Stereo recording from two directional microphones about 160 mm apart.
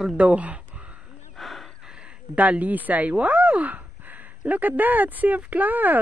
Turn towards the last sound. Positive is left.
turn(degrees=-10)  # may be behind; listen again after turning